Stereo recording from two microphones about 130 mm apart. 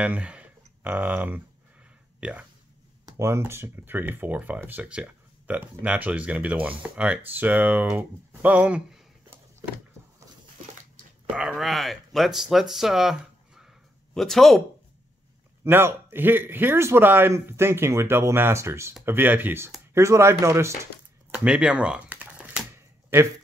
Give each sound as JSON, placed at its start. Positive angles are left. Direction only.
{"t": 0.0, "sound": "speech", "side_deg": -10}
{"t": 2.1, "sound": "a sound", "side_deg": -10}
{"t": 3.1, "sound": "speech", "side_deg": -20}
{"t": 11.3, "sound": "speech", "side_deg": 0}
{"t": 15.6, "sound": "a man's voice", "side_deg": -20}
{"t": 21.3, "sound": "typing", "side_deg": -10}